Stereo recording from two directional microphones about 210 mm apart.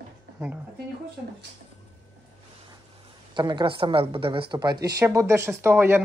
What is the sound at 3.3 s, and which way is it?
Speech, 20° right (ahead or behind).